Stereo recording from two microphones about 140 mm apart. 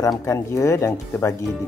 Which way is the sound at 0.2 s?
20° left (ahead or behind).